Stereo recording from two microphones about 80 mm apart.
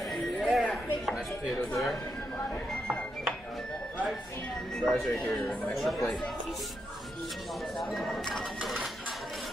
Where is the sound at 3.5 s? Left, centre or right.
Centre.